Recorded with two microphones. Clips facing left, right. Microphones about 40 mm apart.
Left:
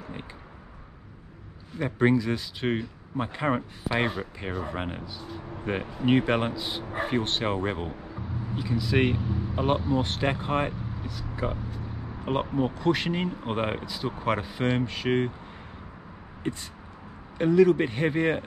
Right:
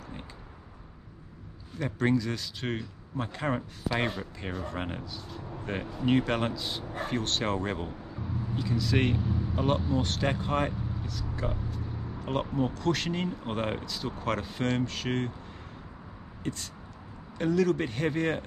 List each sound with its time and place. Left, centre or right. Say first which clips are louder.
0.0 s a sound: left 4 dB; left
1.8 s speech: left 4 dB; centre
16.5 s speech: left 3 dB; centre